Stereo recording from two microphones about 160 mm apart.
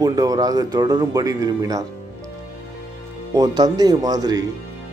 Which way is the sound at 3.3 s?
25° right (ahead or behind).